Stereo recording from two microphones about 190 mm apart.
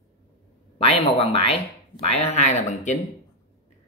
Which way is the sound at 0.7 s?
30° left (ahead or behind).